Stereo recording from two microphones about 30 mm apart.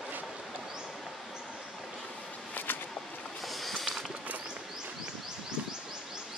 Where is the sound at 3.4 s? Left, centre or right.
Centre.